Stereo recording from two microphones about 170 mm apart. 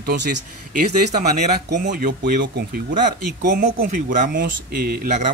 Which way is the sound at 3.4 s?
55° right (ahead or behind).